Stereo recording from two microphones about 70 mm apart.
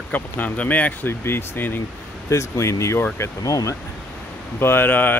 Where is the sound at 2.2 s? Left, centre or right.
Left.